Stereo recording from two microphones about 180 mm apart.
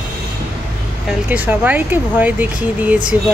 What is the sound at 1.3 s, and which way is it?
Speech, 10° right (ahead or behind).